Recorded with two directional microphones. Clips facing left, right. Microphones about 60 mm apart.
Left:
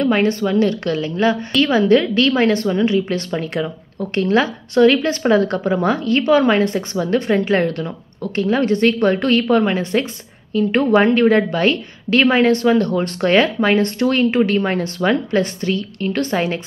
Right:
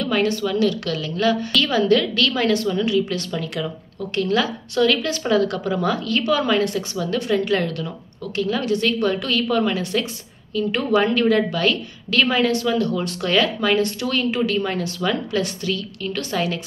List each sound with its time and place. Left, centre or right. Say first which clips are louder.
0.0 s a woman's voice: left 4 dB; left